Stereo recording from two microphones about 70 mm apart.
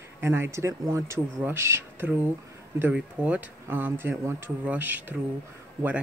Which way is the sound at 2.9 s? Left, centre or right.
Centre.